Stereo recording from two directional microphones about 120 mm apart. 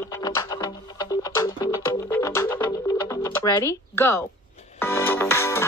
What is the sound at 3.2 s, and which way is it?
Speech, 30° left (ahead or behind).